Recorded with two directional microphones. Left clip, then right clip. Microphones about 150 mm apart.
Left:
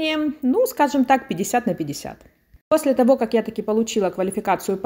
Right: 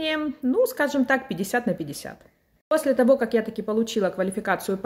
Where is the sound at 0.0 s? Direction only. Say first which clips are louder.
Left 4 dB; 15° left (ahead or behind).